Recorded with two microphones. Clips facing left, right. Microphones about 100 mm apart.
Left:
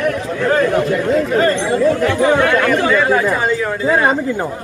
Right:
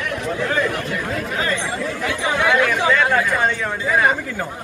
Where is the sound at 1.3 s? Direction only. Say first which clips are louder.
Left 9 dB; 40° left (ahead or behind).